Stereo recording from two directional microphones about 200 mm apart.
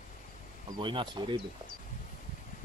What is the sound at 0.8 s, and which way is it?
Speech, 25° right (ahead or behind).